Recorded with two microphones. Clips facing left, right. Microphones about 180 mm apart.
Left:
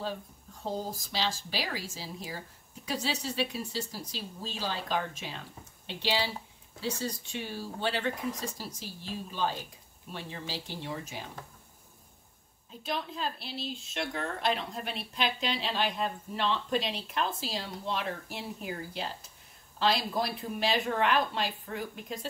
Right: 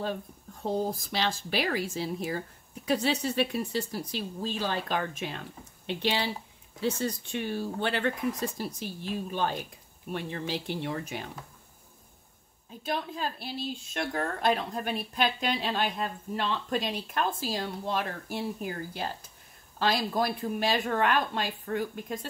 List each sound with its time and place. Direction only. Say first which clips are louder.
0.0 s speech: right 3 dB; 55° right (ahead or behind)
12.8 s a woman's voice: right 2 dB; 50° right (ahead or behind)
19.8 s a woman's voice: right 2 dB; 50° right (ahead or behind)